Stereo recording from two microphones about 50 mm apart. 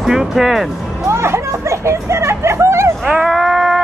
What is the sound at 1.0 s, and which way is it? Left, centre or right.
Children playing, right.